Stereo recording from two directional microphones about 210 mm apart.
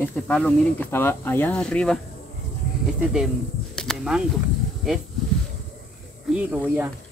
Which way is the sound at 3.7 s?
5° left (ahead or behind).